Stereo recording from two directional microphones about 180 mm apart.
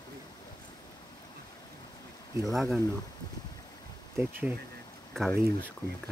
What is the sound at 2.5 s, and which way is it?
Speech, centre (ahead or behind).